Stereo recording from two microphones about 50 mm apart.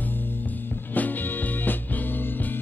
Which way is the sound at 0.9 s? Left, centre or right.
Left.